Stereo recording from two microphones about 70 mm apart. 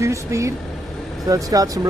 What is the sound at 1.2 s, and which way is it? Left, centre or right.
Speech, right.